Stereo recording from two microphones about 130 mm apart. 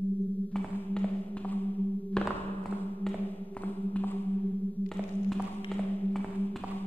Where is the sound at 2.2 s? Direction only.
5° left (ahead or behind).